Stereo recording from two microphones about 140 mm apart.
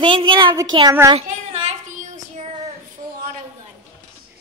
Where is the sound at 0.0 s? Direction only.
35° right (ahead or behind).